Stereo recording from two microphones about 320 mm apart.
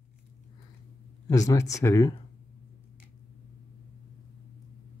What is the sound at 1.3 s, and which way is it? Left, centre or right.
Speech, centre.